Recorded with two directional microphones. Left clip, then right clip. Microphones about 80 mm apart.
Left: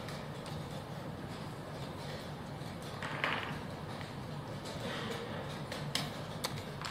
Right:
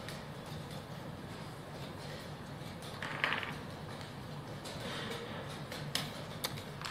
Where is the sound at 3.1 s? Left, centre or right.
Centre.